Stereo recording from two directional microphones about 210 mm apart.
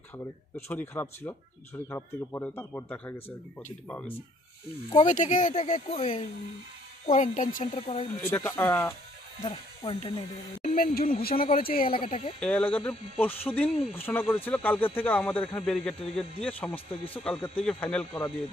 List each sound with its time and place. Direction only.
0.7 s speech: 10° left (ahead or behind)
5.0 s speech: 35° left (ahead or behind)
8.3 s speech: 15° left (ahead or behind)
9.4 s speech: 25° left (ahead or behind)
10.7 s speech: 45° left (ahead or behind)
11.9 s speech: 25° left (ahead or behind)
12.4 s speech: 5° left (ahead or behind)